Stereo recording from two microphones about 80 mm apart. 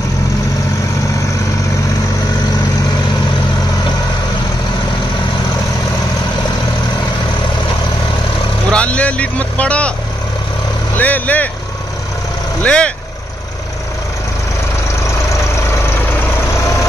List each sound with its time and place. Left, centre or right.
8.7 s vehicle: centre
11.0 s vehicle: left
12.6 s speech: centre